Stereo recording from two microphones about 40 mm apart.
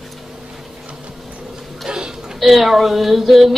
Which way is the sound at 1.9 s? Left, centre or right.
Right.